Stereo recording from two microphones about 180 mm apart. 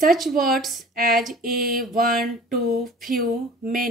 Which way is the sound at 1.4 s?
55° right (ahead or behind).